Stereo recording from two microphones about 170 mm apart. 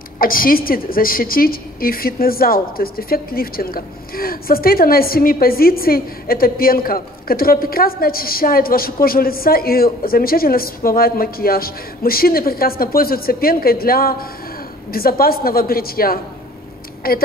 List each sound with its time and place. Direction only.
0.2 s a woman's voice: 55° left (ahead or behind)